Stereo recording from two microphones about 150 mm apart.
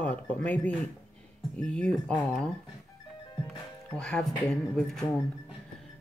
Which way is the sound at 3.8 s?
5° left (ahead or behind).